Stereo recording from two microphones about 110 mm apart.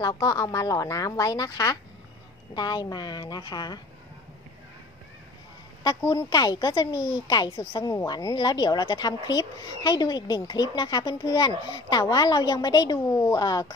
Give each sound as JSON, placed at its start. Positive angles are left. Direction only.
{"t": 0.0, "sound": "a woman's voice", "side_deg": 35}
{"t": 5.9, "sound": "a woman's voice", "side_deg": 35}
{"t": 7.8, "sound": "a woman's voice", "side_deg": 30}